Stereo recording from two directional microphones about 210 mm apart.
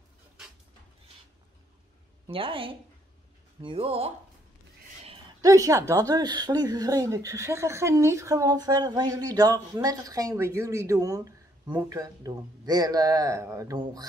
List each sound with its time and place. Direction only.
2.2 s a woman's voice: 25° right (ahead or behind)
5.4 s speech: 15° right (ahead or behind)